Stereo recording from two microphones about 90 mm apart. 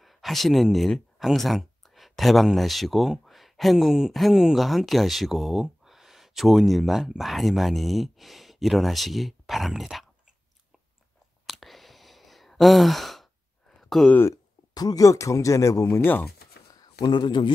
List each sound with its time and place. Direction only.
0.0 s speech: centre (ahead or behind)
11.4 s sigh: centre (ahead or behind)
13.7 s a sound: 5° left (ahead or behind)
14.3 s speech: 45° left (ahead or behind); by 16.3 s 25° left (ahead or behind)
16.7 s speech: 50° left (ahead or behind)